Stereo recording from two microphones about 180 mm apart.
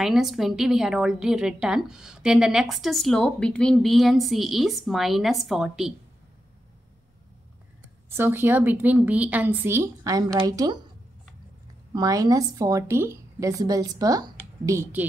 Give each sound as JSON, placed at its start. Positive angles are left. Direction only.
{"t": 0.0, "sound": "a woman's voice", "side_deg": 0}
{"t": 8.1, "sound": "a woman's voice", "side_deg": -10}
{"t": 11.9, "sound": "a woman's voice", "side_deg": -20}